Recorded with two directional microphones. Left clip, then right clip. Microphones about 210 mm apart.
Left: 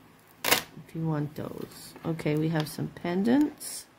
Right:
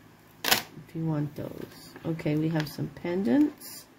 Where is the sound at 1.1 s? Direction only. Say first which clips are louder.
Even; 15° left (ahead or behind).